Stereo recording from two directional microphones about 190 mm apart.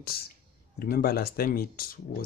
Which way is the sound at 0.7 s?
55° left (ahead or behind).